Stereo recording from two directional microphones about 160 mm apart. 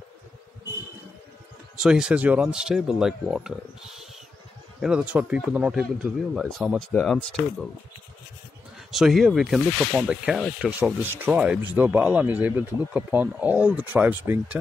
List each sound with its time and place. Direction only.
1.8 s speech: 5° right (ahead or behind)
6.9 s speech: 10° left (ahead or behind)
8.7 s speech: centre (ahead or behind)